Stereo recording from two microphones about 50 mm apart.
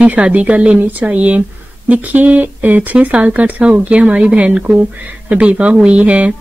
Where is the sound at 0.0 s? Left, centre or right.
Right.